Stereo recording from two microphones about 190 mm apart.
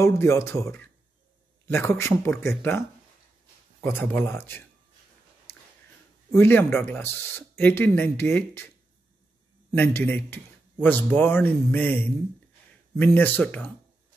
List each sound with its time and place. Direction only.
0.0 s speech: 15° left (ahead or behind)
3.8 s speech: 10° left (ahead or behind)
6.3 s speech: 10° left (ahead or behind)
9.7 s speech: 10° left (ahead or behind)